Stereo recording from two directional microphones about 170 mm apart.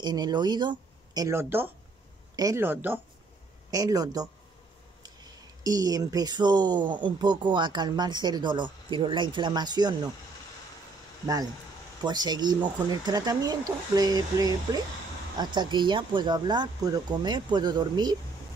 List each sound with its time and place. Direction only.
0.0 s speech: 25° right (ahead or behind)
12.0 s speech: 25° right (ahead or behind)